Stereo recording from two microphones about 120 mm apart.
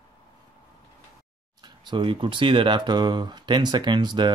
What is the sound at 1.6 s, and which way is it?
Speech, 40° right (ahead or behind).